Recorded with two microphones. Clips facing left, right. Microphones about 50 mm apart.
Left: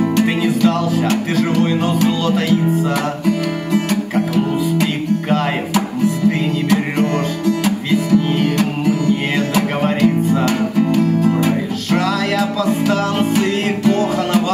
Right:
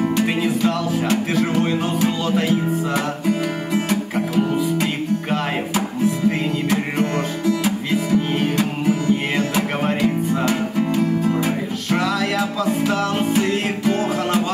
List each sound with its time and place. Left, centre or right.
0.1 s music: left